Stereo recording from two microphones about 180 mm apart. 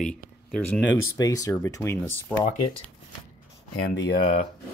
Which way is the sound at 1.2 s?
20° left (ahead or behind).